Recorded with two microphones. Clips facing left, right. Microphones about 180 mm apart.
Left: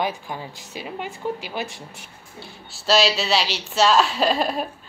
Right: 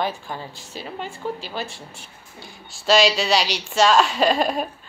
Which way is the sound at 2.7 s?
5° left (ahead or behind).